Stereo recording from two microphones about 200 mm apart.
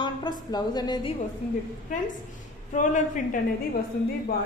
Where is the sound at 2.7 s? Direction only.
40° left (ahead or behind).